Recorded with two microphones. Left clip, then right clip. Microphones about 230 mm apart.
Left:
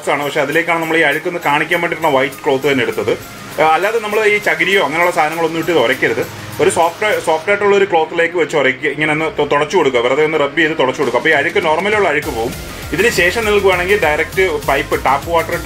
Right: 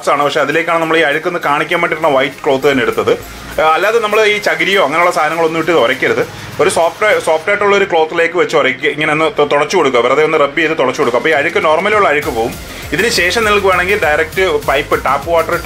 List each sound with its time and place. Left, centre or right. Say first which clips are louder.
0.0 s speech: right 4 dB; right